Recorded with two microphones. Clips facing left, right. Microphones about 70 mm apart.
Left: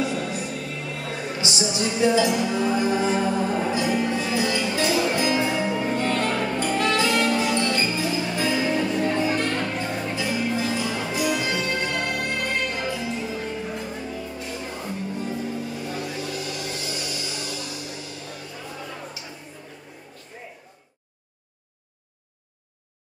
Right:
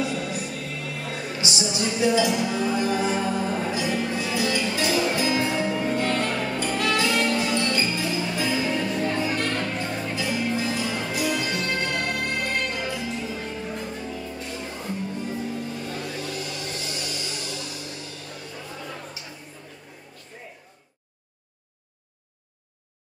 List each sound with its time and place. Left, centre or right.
0.0 s music: centre
2.0 s music: left
2.2 s music: centre